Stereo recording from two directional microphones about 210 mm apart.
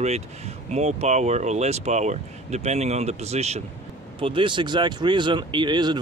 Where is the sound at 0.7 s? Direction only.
30° right (ahead or behind).